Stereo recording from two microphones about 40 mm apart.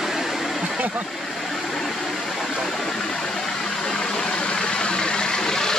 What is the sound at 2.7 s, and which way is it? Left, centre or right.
Engine, centre.